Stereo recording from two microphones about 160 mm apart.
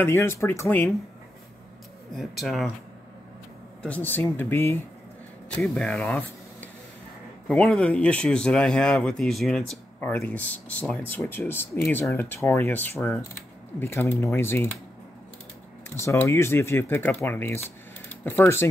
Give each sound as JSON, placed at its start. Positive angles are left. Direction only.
{"t": 0.0, "sound": "speech", "side_deg": 15}
{"t": 2.1, "sound": "speech", "side_deg": 0}
{"t": 3.8, "sound": "speech", "side_deg": 10}
{"t": 16.0, "sound": "speech", "side_deg": 15}